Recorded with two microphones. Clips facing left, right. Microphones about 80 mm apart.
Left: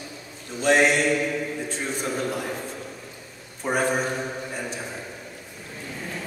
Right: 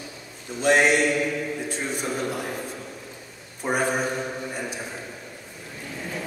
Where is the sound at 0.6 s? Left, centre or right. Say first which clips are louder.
Even; centre.